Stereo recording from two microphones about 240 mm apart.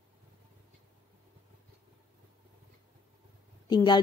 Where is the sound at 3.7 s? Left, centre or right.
Centre.